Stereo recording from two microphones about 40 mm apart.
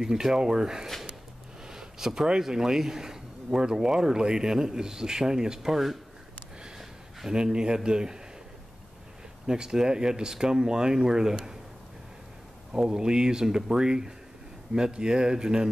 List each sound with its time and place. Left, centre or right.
0.0 s speech: centre
6.8 s a sound: centre
7.3 s speech: right
9.5 s speech: centre
12.7 s speech: centre